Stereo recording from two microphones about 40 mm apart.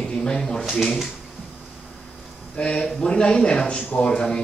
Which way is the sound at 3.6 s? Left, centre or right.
Left.